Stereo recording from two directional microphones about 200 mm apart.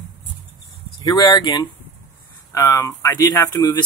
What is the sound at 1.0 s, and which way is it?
Speech, 20° left (ahead or behind).